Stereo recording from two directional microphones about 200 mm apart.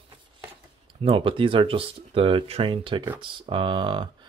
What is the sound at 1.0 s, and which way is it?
Speech, 25° right (ahead or behind).